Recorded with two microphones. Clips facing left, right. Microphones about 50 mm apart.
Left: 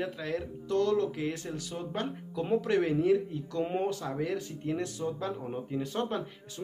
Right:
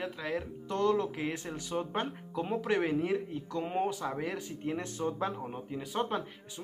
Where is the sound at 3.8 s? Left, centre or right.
Centre.